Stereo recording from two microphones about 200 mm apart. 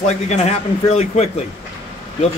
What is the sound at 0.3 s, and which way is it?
Speech, 35° left (ahead or behind).